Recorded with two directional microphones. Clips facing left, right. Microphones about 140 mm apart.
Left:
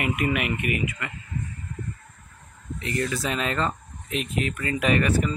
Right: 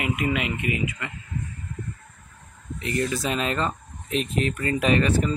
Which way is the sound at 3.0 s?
20° right (ahead or behind).